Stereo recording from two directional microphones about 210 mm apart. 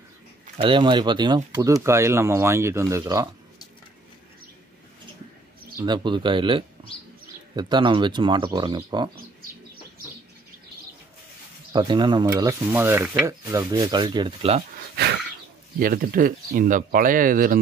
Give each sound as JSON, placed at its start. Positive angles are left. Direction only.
{"t": 0.6, "sound": "speech", "side_deg": -25}
{"t": 5.9, "sound": "speech", "side_deg": -20}
{"t": 11.7, "sound": "speech", "side_deg": -20}
{"t": 15.8, "sound": "speech", "side_deg": -45}